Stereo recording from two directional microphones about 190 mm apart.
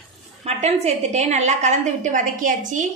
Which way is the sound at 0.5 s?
35° right (ahead or behind).